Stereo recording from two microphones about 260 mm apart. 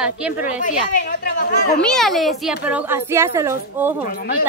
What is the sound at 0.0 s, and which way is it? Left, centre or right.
Speech, centre.